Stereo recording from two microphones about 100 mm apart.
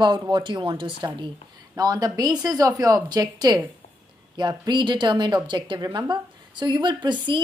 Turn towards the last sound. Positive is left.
turn(degrees=-50)  # may be behind; listen again after turning